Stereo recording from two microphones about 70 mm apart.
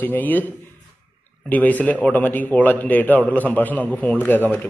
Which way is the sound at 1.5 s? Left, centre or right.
Left.